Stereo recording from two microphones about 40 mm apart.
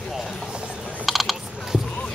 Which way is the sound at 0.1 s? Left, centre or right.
Centre.